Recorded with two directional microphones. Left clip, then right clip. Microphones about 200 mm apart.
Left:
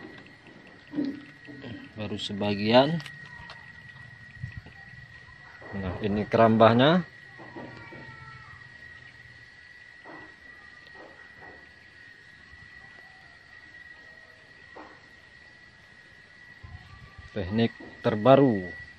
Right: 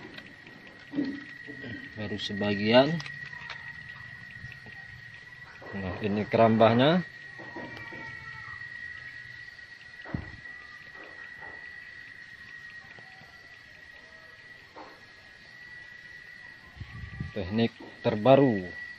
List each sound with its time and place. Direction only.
1.6 s speech: 5° left (ahead or behind)
5.8 s speech: 10° left (ahead or behind)
17.4 s a sound: 10° left (ahead or behind)